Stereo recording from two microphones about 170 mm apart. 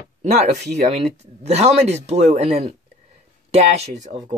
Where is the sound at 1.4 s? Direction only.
40° right (ahead or behind).